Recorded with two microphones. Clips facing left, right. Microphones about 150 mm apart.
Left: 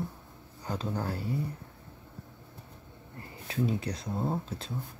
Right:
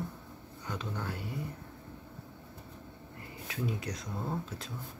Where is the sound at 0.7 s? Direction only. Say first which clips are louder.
Left 5 dB; 35° left (ahead or behind).